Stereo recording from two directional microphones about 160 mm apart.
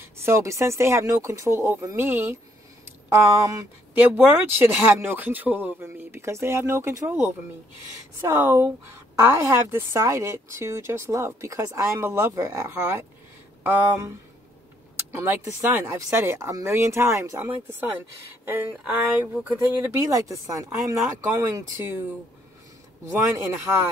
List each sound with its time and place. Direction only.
0.0 s speech: 15° right (ahead or behind)
15.1 s speech: 15° right (ahead or behind)